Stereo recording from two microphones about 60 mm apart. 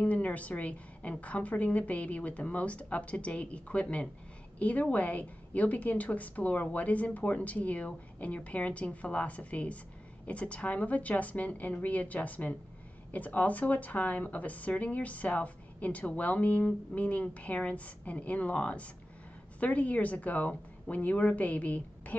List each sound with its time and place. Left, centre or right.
0.0 s a woman's voice: left